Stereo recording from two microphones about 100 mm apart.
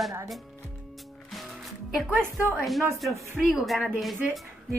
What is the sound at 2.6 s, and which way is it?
A woman's voice, centre (ahead or behind).